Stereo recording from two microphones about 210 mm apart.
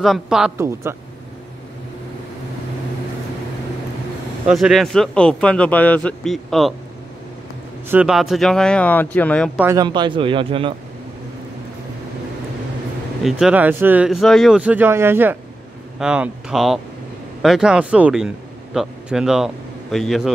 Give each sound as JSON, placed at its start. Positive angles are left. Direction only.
{"t": 0.0, "sound": "speech", "side_deg": 0}
{"t": 0.6, "sound": "speech", "side_deg": -10}
{"t": 4.5, "sound": "speech", "side_deg": 0}
{"t": 7.9, "sound": "speech", "side_deg": -5}
{"t": 9.6, "sound": "speech", "side_deg": -15}
{"t": 13.2, "sound": "a man's voice", "side_deg": -5}